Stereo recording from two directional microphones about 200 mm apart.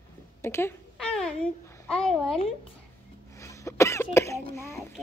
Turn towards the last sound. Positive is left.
turn(degrees=15)  # may be behind; listen again after turning